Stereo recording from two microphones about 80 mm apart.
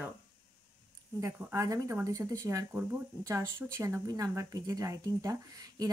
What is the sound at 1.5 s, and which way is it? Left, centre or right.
Speech, right.